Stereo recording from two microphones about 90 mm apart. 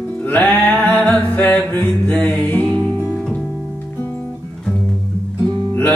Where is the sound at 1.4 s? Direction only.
20° left (ahead or behind).